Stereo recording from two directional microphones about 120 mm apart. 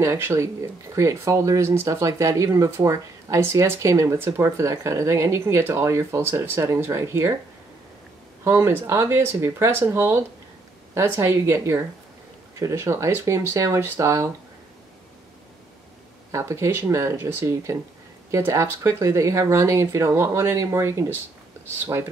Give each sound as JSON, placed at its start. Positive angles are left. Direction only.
{"t": 0.0, "sound": "speech", "side_deg": -20}
{"t": 8.5, "sound": "speech", "side_deg": -25}
{"t": 16.3, "sound": "speech", "side_deg": -25}